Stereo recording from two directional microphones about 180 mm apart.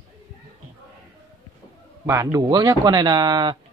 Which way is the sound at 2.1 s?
15° right (ahead or behind).